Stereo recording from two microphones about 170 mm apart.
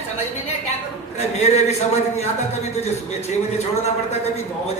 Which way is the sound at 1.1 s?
40° left (ahead or behind).